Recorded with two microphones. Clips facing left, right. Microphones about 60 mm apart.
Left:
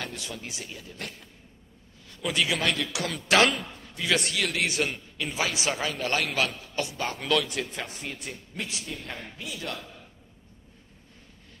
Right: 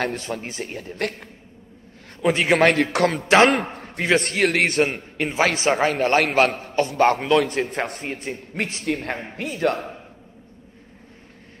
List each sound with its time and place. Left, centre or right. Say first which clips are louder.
0.0 s a man's voice: right 11 dB; right
2.1 s a man's voice: right 10 dB; right
3.3 s a man's voice: right 6 dB; right
3.5 s a man's voice: right 11 dB; right
6.9 s a man's voice: right 15 dB; right
7.2 s a man's voice: right 8 dB; right
8.0 s a man's voice: right 8 dB; right